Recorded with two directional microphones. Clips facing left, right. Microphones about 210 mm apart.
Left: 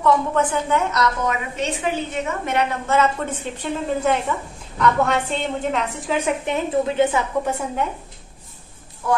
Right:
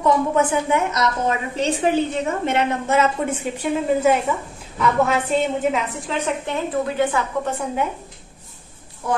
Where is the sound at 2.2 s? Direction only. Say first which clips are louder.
Right 2 dB; 30° right (ahead or behind).